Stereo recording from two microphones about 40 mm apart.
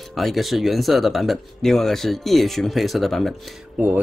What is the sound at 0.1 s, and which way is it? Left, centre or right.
Speech, centre.